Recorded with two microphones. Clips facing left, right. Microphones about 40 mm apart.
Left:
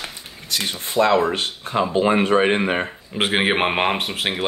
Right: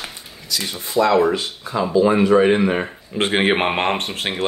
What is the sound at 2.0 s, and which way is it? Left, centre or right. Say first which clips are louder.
Speech: right 4 dB; left.